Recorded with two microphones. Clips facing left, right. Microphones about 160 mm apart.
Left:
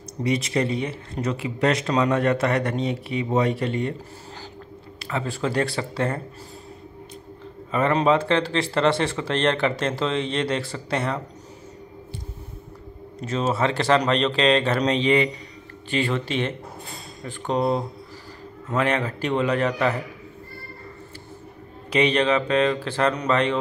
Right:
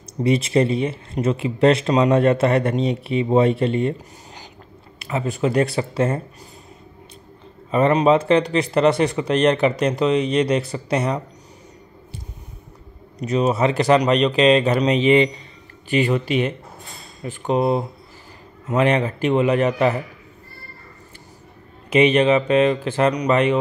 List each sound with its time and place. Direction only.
0.2 s speech: 25° right (ahead or behind)
4.9 s speech: 20° right (ahead or behind)
7.7 s speech: 20° right (ahead or behind)
13.2 s speech: 15° right (ahead or behind)
21.9 s speech: 20° right (ahead or behind)